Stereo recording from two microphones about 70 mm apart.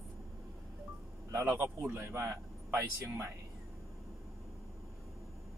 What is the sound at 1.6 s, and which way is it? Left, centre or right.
Speech, right.